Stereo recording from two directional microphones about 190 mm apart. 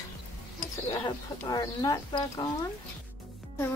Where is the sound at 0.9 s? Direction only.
20° left (ahead or behind).